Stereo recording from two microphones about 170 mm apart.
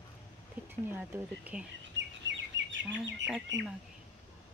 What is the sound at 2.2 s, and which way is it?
Chirp, 90° right.